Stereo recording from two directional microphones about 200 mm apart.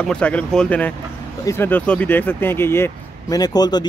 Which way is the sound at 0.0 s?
5° left (ahead or behind).